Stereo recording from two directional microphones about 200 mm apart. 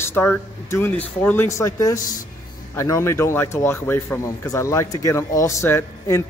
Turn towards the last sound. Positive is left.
turn(degrees=15)  # may be behind; listen again after turning